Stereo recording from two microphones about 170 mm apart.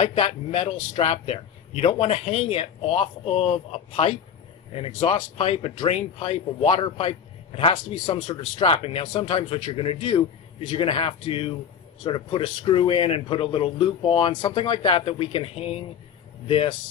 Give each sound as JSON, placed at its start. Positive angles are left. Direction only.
{"t": 0.0, "sound": "speech", "side_deg": 40}